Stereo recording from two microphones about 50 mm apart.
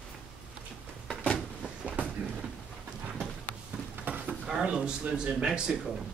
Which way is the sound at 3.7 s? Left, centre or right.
Right.